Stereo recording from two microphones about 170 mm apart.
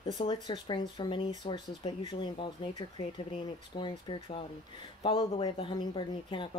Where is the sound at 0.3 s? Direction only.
25° left (ahead or behind).